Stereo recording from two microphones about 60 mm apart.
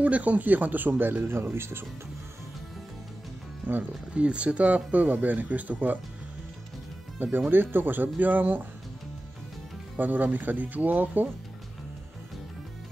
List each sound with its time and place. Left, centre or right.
0.0 s speech: right
3.6 s speech: right
4.1 s speech: centre
7.2 s speech: right
9.9 s speech: right